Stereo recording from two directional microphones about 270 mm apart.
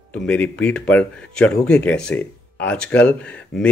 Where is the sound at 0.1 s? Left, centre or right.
Centre.